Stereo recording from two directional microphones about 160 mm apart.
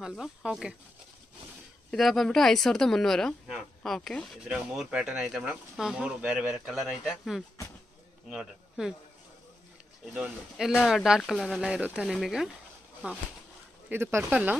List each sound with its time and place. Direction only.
0.2 s speech: 5° right (ahead or behind)
1.9 s a man's voice: centre (ahead or behind)
10.0 s speech: 5° right (ahead or behind)